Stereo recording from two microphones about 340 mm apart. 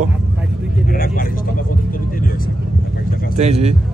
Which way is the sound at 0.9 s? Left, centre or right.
Left.